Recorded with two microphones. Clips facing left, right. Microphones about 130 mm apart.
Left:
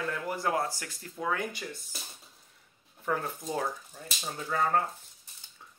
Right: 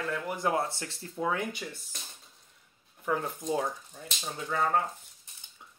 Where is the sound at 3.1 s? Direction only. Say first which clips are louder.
Right 1 dB; 10° right (ahead or behind).